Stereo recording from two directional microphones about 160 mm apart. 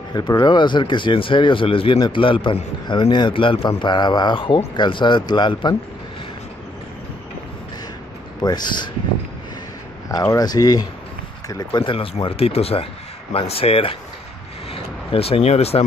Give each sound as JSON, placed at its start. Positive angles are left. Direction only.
{"t": 0.1, "sound": "speech", "side_deg": 25}
{"t": 8.4, "sound": "speech", "side_deg": 25}
{"t": 10.0, "sound": "speech", "side_deg": 20}